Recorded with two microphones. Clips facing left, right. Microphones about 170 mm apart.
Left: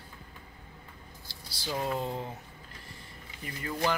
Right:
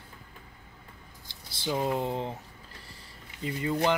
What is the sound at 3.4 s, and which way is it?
Speech, 20° right (ahead or behind).